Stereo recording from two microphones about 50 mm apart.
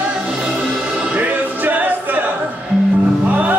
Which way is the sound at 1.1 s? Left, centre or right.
Right.